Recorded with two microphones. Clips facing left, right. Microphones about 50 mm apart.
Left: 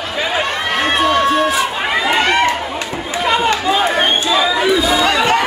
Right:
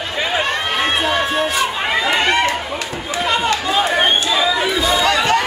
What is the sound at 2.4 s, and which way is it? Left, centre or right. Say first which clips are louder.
Run: left 3 dB; left.